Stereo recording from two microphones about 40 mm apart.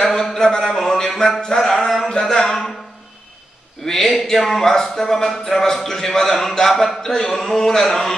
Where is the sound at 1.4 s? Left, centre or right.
Centre.